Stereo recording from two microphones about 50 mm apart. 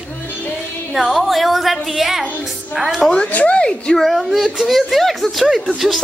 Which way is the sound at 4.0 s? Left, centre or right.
Centre.